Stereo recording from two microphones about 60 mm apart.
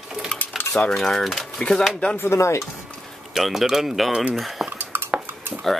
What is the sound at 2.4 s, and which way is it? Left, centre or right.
Stir, left.